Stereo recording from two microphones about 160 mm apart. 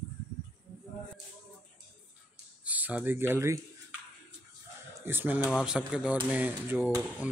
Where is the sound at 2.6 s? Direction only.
10° right (ahead or behind).